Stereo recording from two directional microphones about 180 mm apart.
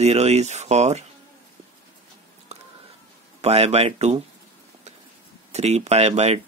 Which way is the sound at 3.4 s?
35° right (ahead or behind).